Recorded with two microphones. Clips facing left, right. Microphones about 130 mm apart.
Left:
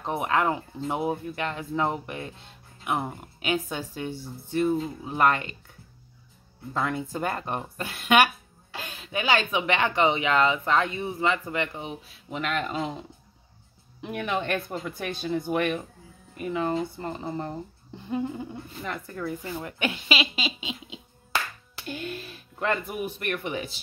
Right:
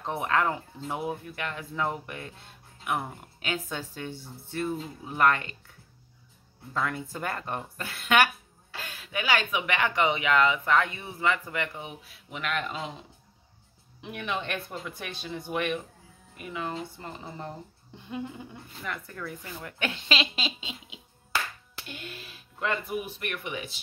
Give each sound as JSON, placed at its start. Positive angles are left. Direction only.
{"t": 0.0, "sound": "speech", "side_deg": 15}
{"t": 6.7, "sound": "speech", "side_deg": 20}
{"t": 14.0, "sound": "speech", "side_deg": 45}
{"t": 19.9, "sound": "speech", "side_deg": 5}
{"t": 20.6, "sound": "a sound", "side_deg": 25}
{"t": 21.8, "sound": "speech", "side_deg": 45}